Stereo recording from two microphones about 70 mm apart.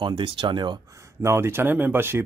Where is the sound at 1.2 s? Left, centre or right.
Right.